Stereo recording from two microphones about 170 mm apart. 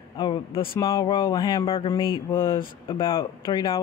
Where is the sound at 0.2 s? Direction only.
30° left (ahead or behind).